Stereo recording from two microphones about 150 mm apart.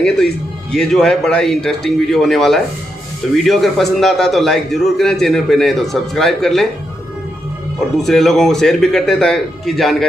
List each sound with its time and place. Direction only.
0.0 s a man's voice: 5° left (ahead or behind)
8.0 s a man's voice: centre (ahead or behind)